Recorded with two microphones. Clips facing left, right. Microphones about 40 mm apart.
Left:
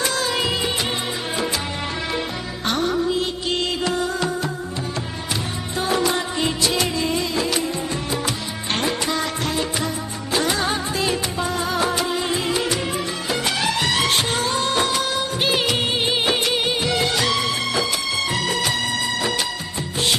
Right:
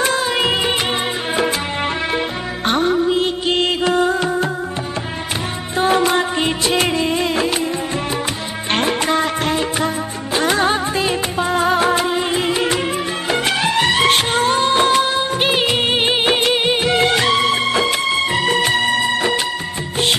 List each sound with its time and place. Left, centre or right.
0.0 s music of bollywood: right
2.1 s music: right
5.8 s music: right
8.7 s music: right
15.9 s music of bollywood: right